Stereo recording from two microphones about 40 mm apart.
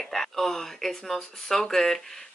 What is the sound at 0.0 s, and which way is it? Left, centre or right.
Speech, centre.